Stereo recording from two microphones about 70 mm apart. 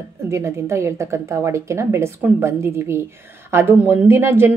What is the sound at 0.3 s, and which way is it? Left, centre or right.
A woman's voice, right.